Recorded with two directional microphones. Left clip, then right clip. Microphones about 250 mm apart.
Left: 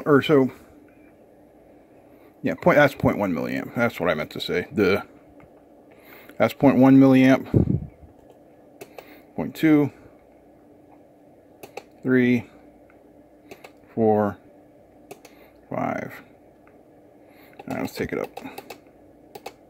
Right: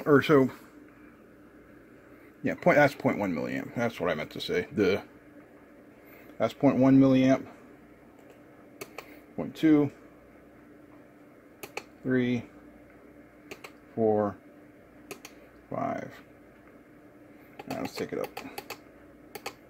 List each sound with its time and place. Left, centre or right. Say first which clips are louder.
0.0 s speech: left 4 dB; centre
2.4 s speech: left 5 dB; centre
6.3 s speech: left 7 dB; left
9.4 s speech: left 4 dB; left
12.1 s speech: left 8 dB; left
13.9 s speech: left 6 dB; left
15.7 s speech: left 5 dB; left
17.7 s speech: left 6 dB; left